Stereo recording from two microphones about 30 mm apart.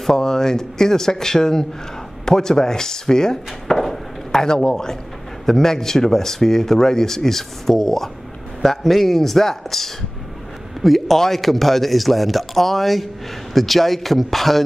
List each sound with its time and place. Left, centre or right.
0.0 s speech: centre
3.6 s chop: centre
5.4 s a man's voice: centre